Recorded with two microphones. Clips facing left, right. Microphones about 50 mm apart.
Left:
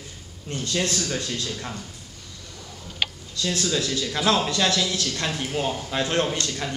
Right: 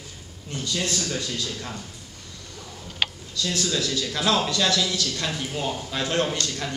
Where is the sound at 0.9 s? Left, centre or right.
Centre.